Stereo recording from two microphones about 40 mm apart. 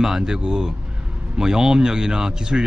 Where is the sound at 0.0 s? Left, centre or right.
Centre.